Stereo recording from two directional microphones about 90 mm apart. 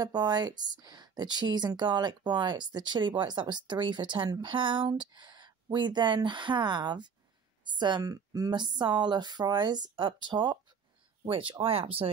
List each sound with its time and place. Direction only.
0.0 s speech: 50° right (ahead or behind)
8.0 s speech: 40° right (ahead or behind); by 10.6 s 55° right (ahead or behind)
11.2 s speech: 75° right (ahead or behind); by 12.1 s 90° right